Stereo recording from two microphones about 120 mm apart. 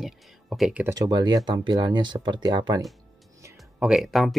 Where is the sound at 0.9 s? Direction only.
35° right (ahead or behind).